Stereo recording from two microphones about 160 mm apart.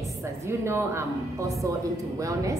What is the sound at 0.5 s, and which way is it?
A woman's voice, 15° right (ahead or behind).